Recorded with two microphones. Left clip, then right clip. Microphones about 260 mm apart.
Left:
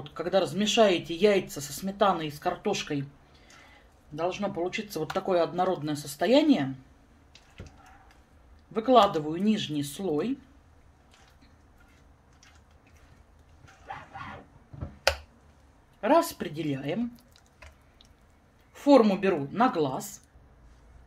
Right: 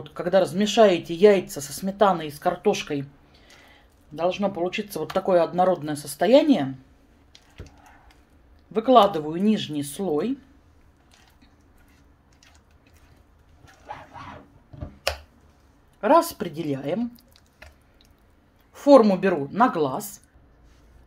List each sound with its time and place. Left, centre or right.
0.1 s a sound: centre
0.7 s a woman's voice: centre
8.7 s a woman's voice: right
15.1 s a sound: centre
16.0 s a woman's voice: right
18.7 s a woman's voice: centre